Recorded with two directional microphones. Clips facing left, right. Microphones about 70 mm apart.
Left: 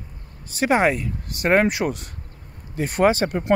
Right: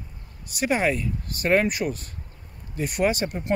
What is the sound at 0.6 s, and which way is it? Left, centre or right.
Speech, left.